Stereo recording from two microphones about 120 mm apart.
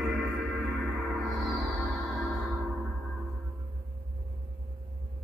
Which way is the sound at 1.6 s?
15° right (ahead or behind).